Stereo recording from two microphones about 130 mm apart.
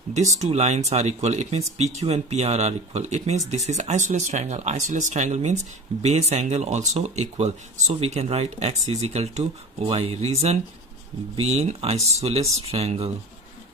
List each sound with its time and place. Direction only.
0.4 s speech: 60° right (ahead or behind)